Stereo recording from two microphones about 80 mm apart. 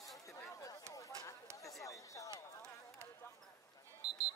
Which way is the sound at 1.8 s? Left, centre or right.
Left.